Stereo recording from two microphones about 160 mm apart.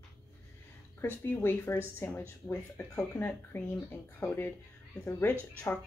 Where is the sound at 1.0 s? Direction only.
15° left (ahead or behind).